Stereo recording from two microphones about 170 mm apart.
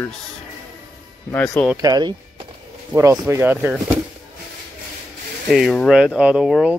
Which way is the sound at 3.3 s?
10° right (ahead or behind).